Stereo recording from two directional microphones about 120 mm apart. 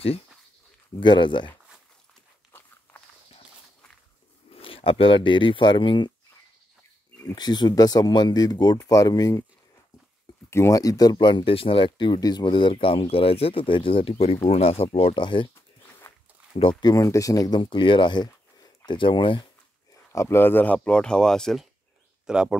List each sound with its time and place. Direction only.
0.9 s speech: 40° left (ahead or behind)
4.5 s speech: 50° left (ahead or behind)
7.3 s speech: 35° left (ahead or behind)
10.5 s speech: 25° left (ahead or behind); by 15.1 s 55° left (ahead or behind)
15.1 s speech: 40° left (ahead or behind)
16.8 s speech: 25° left (ahead or behind); by 19.4 s 45° left (ahead or behind)
19.9 s speech: 25° left (ahead or behind); by 22.6 s 5° right (ahead or behind)